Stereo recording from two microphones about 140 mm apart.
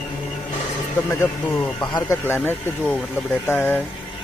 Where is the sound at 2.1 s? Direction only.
15° left (ahead or behind).